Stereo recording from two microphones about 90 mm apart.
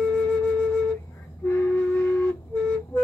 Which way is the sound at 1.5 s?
20° left (ahead or behind).